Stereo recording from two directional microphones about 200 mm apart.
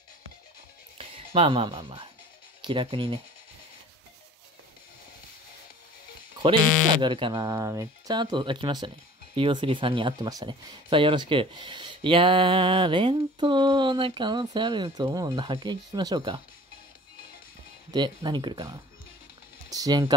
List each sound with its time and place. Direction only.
0.9 s speech: 25° right (ahead or behind)
7.0 s speech: 25° right (ahead or behind)
17.9 s speech: 20° right (ahead or behind)